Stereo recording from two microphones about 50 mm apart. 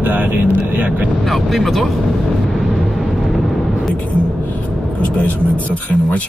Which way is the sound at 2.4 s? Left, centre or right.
Centre.